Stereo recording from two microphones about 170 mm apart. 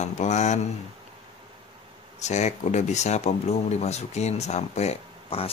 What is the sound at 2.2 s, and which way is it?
Speech, 45° left (ahead or behind).